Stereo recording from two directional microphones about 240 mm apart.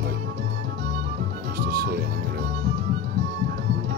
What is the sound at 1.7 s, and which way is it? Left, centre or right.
Music, right.